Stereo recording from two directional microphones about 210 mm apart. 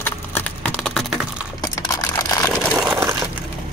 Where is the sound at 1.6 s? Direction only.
15° left (ahead or behind).